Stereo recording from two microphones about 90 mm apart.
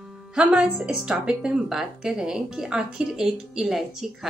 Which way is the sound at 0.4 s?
10° right (ahead or behind).